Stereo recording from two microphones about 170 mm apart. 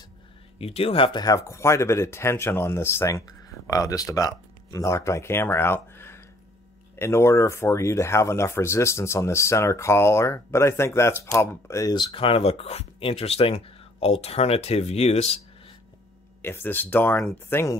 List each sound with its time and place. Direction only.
0.6 s speech: 35° left (ahead or behind)
16.4 s speech: 10° left (ahead or behind)